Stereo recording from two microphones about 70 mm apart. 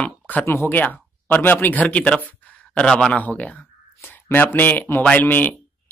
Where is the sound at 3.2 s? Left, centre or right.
Left.